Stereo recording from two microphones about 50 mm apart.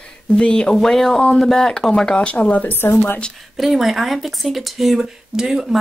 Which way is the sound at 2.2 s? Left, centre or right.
Left.